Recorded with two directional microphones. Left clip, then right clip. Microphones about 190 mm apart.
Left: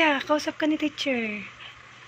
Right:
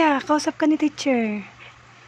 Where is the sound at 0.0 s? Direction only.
35° right (ahead or behind).